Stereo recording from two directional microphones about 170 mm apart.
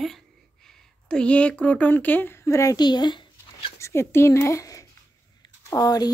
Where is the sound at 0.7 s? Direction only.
5° left (ahead or behind); by 3.7 s 25° left (ahead or behind).